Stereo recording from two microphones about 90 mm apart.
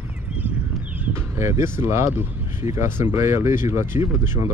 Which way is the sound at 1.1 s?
30° right (ahead or behind).